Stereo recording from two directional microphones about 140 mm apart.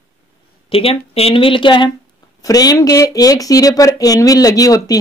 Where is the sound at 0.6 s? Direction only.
40° left (ahead or behind).